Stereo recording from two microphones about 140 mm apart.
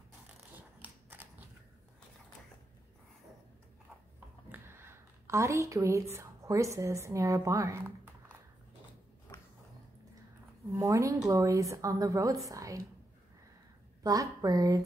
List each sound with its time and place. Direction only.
0.8 s shuffling cards: 15° right (ahead or behind)
4.5 s speech: 15° right (ahead or behind)
10.7 s a woman's voice: 25° right (ahead or behind)
14.0 s a woman's voice: 25° right (ahead or behind)